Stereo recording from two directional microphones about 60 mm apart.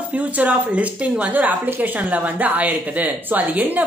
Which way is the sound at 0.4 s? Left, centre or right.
Right.